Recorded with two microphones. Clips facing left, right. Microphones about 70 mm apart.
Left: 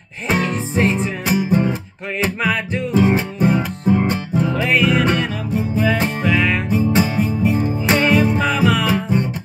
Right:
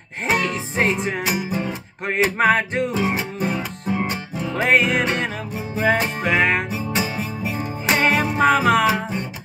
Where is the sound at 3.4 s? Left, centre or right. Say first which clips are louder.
Left 7 dB; left.